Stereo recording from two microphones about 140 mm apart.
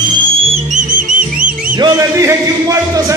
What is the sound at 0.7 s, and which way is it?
Music, 70° right (ahead or behind).